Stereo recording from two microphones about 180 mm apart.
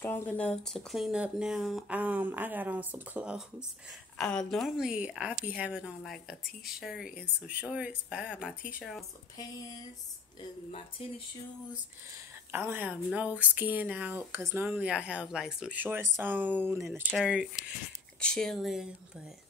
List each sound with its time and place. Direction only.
0.0 s speech: 10° left (ahead or behind)
10.7 s speech: 30° left (ahead or behind)
12.4 s speech: 10° right (ahead or behind)